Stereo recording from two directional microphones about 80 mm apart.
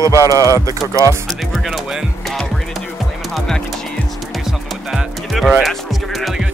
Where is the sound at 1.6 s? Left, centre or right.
Centre.